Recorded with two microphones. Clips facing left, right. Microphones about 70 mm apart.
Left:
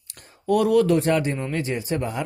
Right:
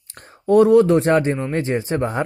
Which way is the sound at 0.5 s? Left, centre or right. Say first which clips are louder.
Right 6 dB; right.